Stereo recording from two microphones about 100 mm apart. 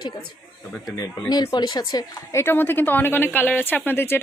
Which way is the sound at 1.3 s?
45° left (ahead or behind).